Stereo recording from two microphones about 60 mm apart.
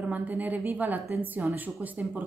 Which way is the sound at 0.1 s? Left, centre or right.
Right.